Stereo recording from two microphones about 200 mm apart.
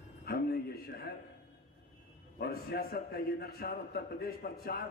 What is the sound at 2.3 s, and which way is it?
A man's voice, 50° left (ahead or behind).